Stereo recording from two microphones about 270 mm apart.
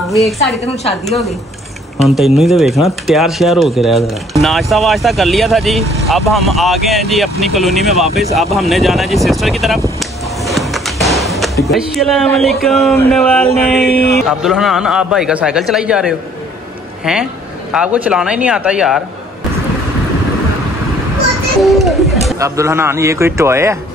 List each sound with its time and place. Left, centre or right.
1.0 s speech: centre
9.9 s a sound: centre
11.6 s speech: centre
13.8 s mantra: left
14.4 s speech: centre
21.6 s a child's voice: centre